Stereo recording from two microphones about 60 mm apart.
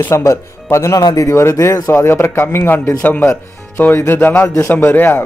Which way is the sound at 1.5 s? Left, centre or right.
Left.